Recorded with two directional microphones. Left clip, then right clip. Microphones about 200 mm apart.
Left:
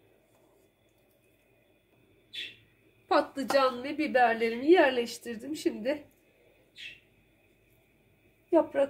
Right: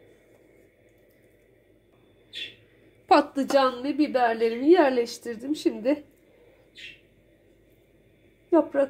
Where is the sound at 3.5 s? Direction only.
15° right (ahead or behind).